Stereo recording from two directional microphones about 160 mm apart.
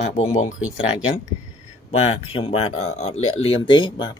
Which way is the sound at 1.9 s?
35° left (ahead or behind).